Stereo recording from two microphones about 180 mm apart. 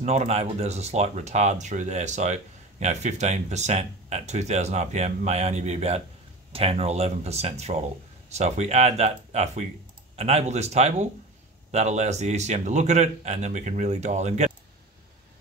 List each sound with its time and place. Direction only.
0.0 s speech: 35° right (ahead or behind)